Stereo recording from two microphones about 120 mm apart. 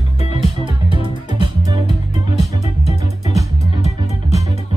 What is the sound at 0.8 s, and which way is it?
Music, 45° right (ahead or behind).